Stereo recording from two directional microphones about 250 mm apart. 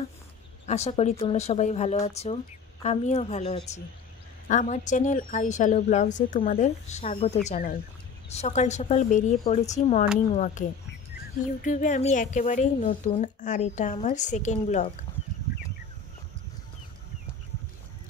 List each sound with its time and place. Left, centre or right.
0.7 s speech: left
11.6 s speech: left